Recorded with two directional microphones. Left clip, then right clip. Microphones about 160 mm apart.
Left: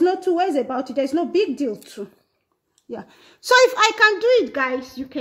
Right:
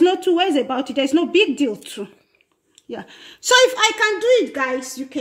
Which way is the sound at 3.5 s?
25° left (ahead or behind).